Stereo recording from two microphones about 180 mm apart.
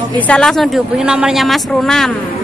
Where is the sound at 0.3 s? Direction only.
Centre (ahead or behind).